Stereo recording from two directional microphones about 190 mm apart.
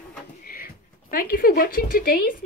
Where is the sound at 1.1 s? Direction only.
50° left (ahead or behind).